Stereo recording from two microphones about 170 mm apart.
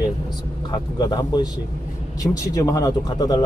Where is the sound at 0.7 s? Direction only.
25° left (ahead or behind).